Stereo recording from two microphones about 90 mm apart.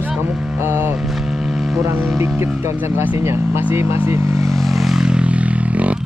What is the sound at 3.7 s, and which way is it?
Speech, 30° right (ahead or behind).